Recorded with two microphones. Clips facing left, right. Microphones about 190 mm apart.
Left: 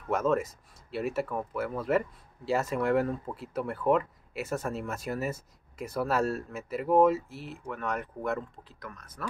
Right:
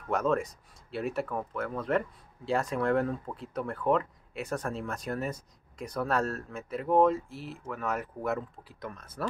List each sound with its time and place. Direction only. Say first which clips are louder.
0.1 s speech: left 1 dB; centre (ahead or behind)
8.7 s speech: right 6 dB; 25° right (ahead or behind)